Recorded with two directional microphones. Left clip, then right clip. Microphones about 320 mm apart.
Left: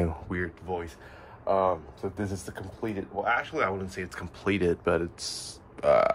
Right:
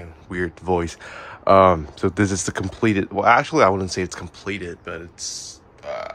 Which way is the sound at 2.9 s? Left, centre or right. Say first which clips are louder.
Right 12 dB; right.